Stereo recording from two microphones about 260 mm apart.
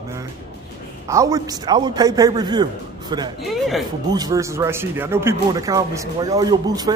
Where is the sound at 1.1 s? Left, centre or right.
Centre.